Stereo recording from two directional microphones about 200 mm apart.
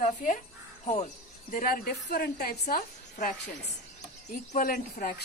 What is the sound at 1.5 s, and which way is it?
A woman's voice, 45° left (ahead or behind).